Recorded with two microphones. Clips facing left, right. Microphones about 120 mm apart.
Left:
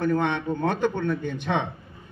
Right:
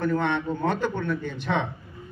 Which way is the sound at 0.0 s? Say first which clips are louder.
Left 1 dB; 15° left (ahead or behind).